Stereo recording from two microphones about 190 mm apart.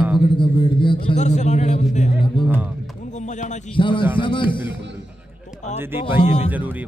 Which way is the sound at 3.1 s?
40° left (ahead or behind).